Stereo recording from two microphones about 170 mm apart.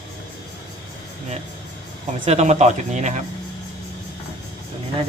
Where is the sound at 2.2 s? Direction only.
40° right (ahead or behind).